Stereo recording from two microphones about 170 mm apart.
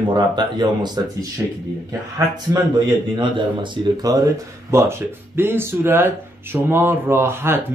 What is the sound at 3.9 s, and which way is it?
Speech, 20° right (ahead or behind).